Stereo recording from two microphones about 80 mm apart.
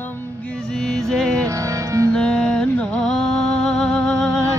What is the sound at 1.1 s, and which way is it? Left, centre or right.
Music, centre.